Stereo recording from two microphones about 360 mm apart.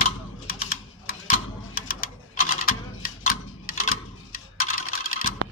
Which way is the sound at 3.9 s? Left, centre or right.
Left.